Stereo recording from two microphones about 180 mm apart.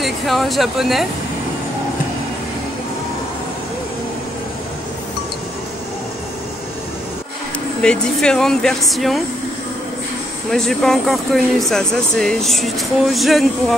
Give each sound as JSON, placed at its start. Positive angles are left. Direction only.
{"t": 0.0, "sound": "speech", "side_deg": 0}
{"t": 7.8, "sound": "speech", "side_deg": 5}
{"t": 10.5, "sound": "speech", "side_deg": 5}